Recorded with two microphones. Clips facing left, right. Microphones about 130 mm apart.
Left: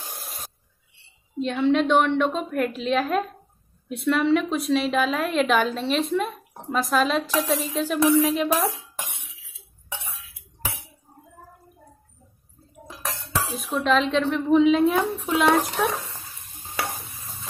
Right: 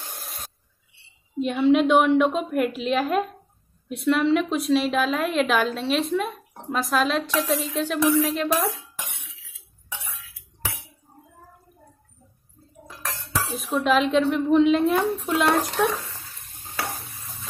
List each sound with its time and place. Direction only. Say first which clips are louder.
1.4 s a woman's voice: right 2 dB; 5° right (ahead or behind)
13.6 s a woman's voice: right 1 dB; centre (ahead or behind)
16.0 s stir: left 1 dB; 25° left (ahead or behind)